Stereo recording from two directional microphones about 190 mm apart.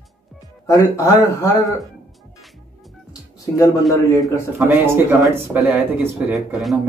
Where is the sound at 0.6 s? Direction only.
15° left (ahead or behind).